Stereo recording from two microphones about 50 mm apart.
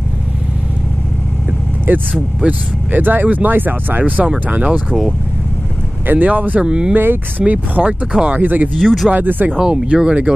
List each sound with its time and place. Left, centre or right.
1.9 s speech: right
4.5 s speech: right
6.0 s speech: right
6.6 s speech: centre
7.0 s speech: right
7.5 s speech: right
8.7 s speech: centre
9.1 s speech: right
9.6 s speech: centre